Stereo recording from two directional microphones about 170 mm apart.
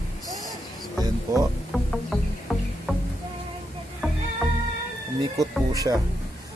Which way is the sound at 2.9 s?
5° left (ahead or behind).